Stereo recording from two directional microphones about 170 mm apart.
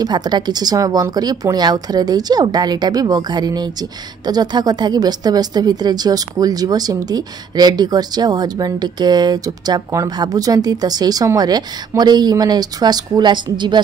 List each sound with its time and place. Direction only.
0.0 s a woman's voice: 25° right (ahead or behind)